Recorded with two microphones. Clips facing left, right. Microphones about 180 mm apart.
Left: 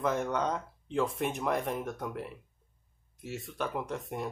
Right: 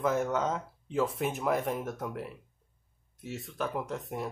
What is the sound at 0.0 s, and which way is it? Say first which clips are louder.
Speech: right 1 dB; 5° right (ahead or behind).